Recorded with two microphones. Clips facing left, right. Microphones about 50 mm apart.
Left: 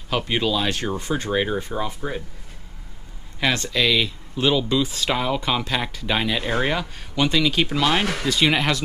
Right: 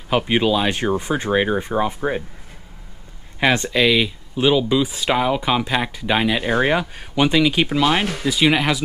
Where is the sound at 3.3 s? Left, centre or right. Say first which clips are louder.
Right 4 dB; right.